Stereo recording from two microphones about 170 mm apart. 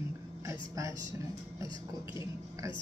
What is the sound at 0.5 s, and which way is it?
Speech, 15° right (ahead or behind).